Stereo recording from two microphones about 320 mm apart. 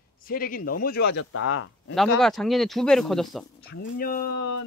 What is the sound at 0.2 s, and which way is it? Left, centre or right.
Speech, left.